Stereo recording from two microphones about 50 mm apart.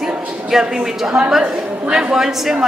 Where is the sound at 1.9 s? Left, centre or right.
Centre.